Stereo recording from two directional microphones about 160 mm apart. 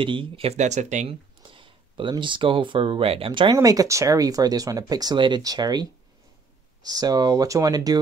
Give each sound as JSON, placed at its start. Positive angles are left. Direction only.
{"t": 0.0, "sound": "speech", "side_deg": -30}
{"t": 1.4, "sound": "speech", "side_deg": -30}
{"t": 3.5, "sound": "speech", "side_deg": -20}